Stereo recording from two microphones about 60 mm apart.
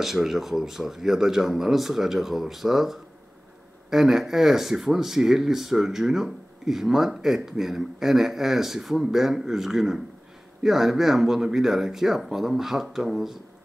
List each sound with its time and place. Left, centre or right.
0.0 s speech: centre